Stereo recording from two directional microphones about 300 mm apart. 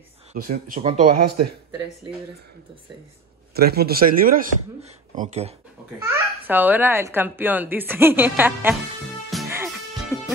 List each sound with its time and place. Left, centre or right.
0.3 s speech: right
3.5 s speech: right
6.0 s a child's voice: centre
9.3 s music: centre